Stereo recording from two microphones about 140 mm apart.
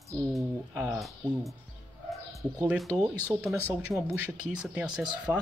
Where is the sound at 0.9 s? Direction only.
Centre (ahead or behind).